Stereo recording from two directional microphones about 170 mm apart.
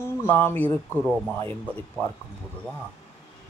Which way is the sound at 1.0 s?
5° right (ahead or behind).